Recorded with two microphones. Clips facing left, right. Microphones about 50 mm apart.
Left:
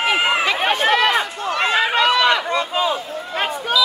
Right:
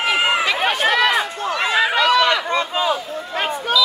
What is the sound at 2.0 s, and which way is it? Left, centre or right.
Run, centre.